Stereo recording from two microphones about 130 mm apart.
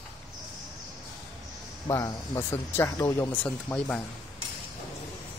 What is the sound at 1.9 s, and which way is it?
Speech, 25° left (ahead or behind).